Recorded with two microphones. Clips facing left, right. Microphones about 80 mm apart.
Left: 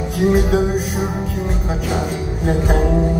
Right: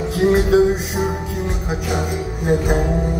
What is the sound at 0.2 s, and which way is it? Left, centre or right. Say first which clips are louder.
Music: even; right.